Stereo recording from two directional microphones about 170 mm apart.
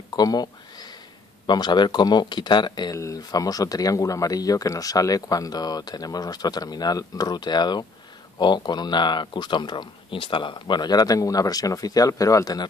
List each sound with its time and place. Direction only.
0.1 s speech: 25° left (ahead or behind)
1.5 s speech: 25° left (ahead or behind)